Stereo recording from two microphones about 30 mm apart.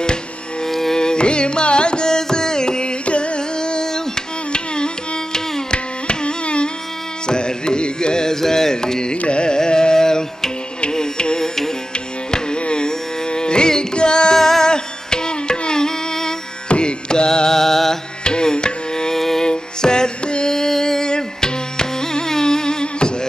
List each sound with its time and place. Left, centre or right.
0.7 s carnatic music: centre
0.9 s carnatic music: left
2.0 s music: left
4.5 s carnatic music: left
10.9 s music: left
12.3 s music: left
12.8 s carnatic music: left
14.3 s music: centre
16.6 s music: left
17.3 s mantra: centre
18.2 s tabla: left
19.1 s music: centre
19.4 s music: left
20.5 s carnatic music: centre